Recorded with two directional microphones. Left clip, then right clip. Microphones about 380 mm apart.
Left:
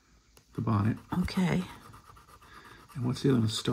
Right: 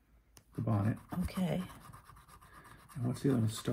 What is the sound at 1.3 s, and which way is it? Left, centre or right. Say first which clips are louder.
Speech: left 5 dB; left.